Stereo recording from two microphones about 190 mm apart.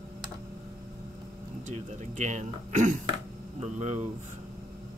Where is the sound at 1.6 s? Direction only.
40° right (ahead or behind).